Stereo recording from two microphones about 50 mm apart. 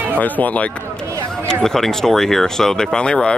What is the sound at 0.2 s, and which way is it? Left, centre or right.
Speech, left.